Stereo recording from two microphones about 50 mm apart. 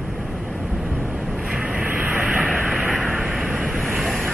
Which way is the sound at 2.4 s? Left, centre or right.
Centre.